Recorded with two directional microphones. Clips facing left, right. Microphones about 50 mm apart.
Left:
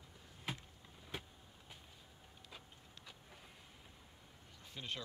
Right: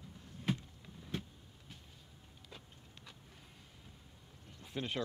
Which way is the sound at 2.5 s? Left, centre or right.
Centre.